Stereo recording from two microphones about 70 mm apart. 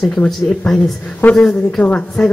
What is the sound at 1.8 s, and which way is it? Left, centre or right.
Speech, centre.